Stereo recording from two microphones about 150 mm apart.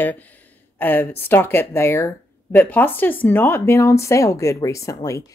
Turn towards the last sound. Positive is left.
turn(degrees=20)  # may be behind; listen again after turning